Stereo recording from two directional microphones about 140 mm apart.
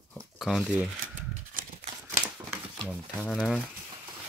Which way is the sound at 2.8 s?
5° left (ahead or behind).